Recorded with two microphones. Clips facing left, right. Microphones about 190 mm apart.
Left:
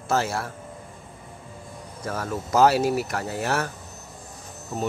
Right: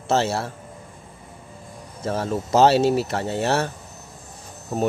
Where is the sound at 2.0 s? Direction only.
25° right (ahead or behind).